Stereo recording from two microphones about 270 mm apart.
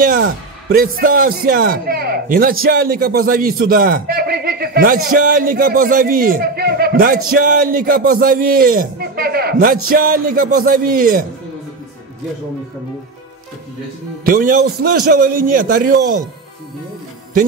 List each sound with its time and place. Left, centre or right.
0.0 s speech: right
14.2 s speech: right